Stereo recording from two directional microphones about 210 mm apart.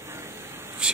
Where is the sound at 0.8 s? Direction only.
5° right (ahead or behind).